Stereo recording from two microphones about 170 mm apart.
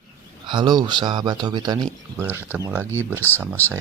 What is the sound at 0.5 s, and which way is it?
Speech, 25° right (ahead or behind).